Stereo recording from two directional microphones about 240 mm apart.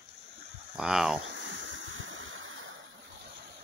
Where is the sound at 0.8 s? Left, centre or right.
Centre.